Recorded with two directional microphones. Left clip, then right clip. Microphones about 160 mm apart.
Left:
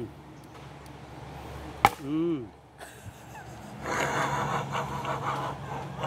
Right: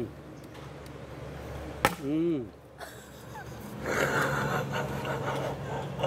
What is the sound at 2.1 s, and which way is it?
Speech, 20° left (ahead or behind).